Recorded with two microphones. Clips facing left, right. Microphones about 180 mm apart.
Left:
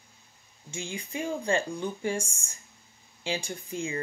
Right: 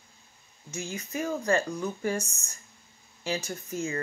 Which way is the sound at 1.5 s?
30° left (ahead or behind).